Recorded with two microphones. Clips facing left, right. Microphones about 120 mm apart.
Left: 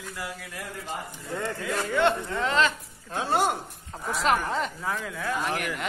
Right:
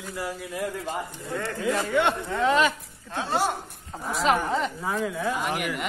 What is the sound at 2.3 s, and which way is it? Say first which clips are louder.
Speech: right 3 dB; 15° right (ahead or behind).